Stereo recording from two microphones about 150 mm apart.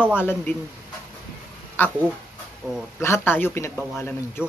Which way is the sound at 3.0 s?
15° left (ahead or behind).